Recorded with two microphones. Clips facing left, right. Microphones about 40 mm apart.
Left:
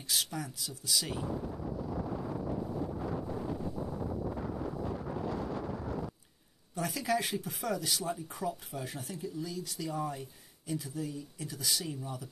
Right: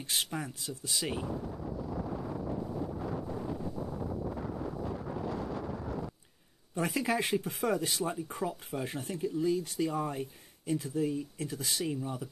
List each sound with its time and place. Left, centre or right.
0.1 s speech: right
6.7 s speech: right